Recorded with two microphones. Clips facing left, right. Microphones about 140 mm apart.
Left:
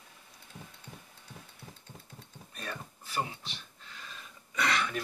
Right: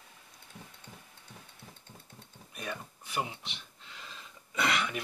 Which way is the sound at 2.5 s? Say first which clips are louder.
Right 2 dB; 10° right (ahead or behind).